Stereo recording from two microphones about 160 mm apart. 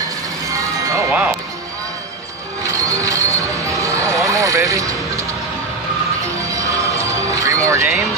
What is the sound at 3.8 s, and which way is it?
Vehicle, 20° right (ahead or behind).